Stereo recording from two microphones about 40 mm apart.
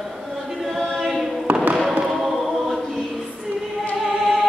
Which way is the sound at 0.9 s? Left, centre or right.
Centre.